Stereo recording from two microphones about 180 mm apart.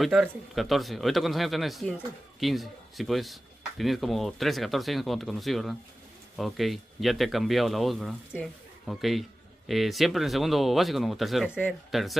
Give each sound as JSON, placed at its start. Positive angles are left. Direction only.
{"t": 0.0, "sound": "speech", "side_deg": 0}